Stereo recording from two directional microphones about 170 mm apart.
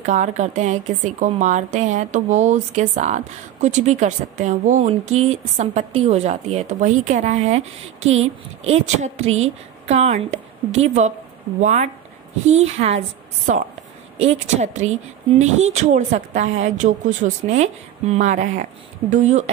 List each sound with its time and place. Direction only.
0.0 s speech: 45° right (ahead or behind)
14.2 s speech: 40° right (ahead or behind)